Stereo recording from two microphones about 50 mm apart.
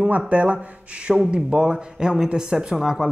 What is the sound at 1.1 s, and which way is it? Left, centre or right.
Speech, centre.